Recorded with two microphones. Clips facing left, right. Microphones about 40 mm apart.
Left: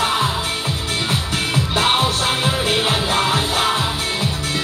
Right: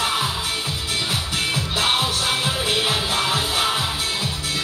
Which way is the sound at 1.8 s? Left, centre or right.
Left.